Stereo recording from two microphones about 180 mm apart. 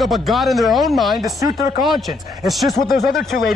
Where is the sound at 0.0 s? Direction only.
Centre (ahead or behind).